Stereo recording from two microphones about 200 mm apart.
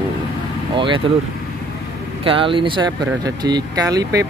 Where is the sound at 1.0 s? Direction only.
25° right (ahead or behind).